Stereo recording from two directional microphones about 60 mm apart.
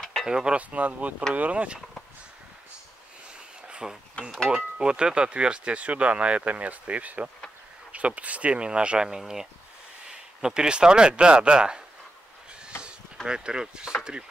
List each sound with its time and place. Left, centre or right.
0.0 s cutlery: centre
0.3 s speech: centre
0.6 s speech: right
3.6 s a sound: centre
4.5 s speech: centre
13.3 s speech: centre